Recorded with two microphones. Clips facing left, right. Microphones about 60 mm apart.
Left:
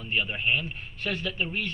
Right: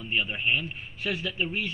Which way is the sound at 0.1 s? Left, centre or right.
Centre.